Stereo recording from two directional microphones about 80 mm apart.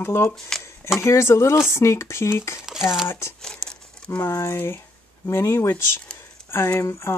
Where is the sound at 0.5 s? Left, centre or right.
Centre.